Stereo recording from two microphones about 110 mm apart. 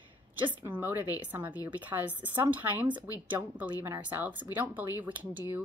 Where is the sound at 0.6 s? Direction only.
20° right (ahead or behind).